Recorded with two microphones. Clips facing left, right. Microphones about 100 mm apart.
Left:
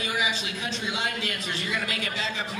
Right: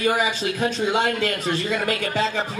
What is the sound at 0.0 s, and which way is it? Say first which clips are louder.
A man's voice: right 8 dB; 50° right (ahead or behind).